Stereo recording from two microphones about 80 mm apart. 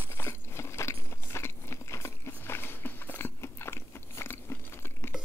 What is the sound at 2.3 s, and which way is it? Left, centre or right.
Biting, left.